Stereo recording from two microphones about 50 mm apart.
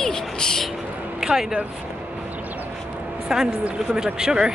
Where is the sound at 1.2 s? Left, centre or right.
Centre.